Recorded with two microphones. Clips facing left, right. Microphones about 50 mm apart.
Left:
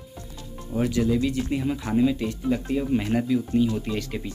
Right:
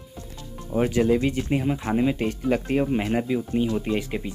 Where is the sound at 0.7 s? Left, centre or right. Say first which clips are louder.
Right 3 dB; right.